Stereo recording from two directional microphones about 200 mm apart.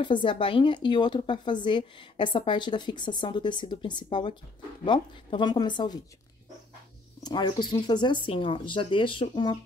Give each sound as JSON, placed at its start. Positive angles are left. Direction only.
{"t": 0.0, "sound": "speech", "side_deg": 25}
{"t": 7.2, "sound": "speech", "side_deg": 20}